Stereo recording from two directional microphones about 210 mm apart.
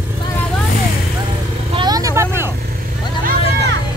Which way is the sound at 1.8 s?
20° right (ahead or behind).